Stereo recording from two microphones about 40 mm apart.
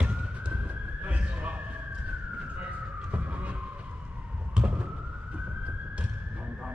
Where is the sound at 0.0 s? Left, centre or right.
Right.